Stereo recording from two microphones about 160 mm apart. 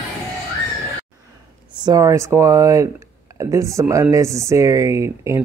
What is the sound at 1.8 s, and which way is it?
Speech, 20° right (ahead or behind).